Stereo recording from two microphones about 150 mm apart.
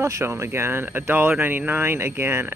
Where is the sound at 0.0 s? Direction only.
15° right (ahead or behind).